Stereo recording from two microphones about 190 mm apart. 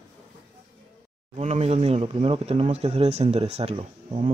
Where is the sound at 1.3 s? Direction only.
35° right (ahead or behind).